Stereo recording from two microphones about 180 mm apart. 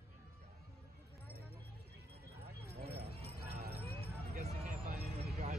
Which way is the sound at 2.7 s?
60° right (ahead or behind).